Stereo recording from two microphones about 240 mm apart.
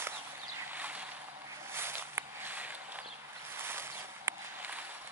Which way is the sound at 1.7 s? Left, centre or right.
Centre.